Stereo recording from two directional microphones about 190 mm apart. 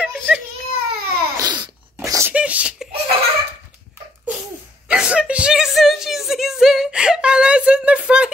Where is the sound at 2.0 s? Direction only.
15° right (ahead or behind).